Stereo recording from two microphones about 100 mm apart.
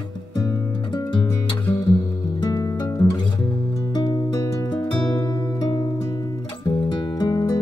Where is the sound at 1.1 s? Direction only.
55° left (ahead or behind).